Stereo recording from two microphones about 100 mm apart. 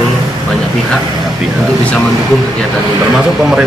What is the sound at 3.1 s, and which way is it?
Speech, 5° right (ahead or behind).